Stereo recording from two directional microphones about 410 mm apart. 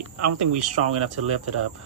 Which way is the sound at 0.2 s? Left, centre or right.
Right.